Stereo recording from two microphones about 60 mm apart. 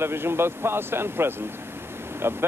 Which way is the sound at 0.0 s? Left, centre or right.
Right.